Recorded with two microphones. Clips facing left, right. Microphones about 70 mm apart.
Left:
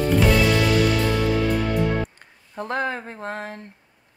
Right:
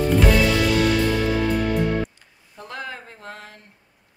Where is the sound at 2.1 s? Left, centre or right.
Left.